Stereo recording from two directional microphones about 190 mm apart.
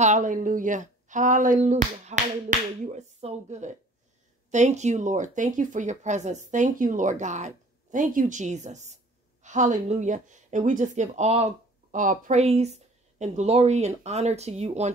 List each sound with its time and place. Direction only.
0.0 s speech: 40° right (ahead or behind)